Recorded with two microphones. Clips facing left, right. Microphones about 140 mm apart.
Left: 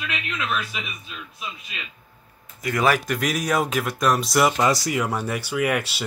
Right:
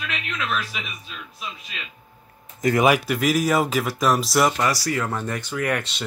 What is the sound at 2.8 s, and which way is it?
Speech, 10° right (ahead or behind).